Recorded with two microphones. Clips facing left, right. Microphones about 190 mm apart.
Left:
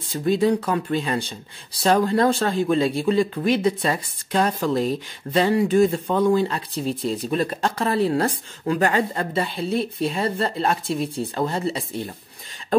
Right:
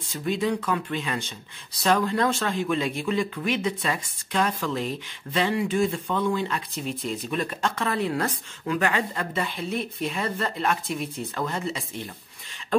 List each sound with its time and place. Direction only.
0.1 s speech: 35° left (ahead or behind)